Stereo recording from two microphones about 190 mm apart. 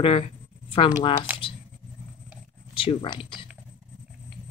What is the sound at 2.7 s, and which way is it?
Speech, 30° left (ahead or behind).